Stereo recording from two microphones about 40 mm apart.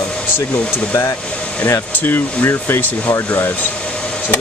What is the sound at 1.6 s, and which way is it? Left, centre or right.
Speech, left.